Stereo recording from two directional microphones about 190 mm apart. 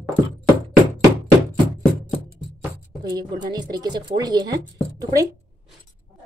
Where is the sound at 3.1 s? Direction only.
20° right (ahead or behind).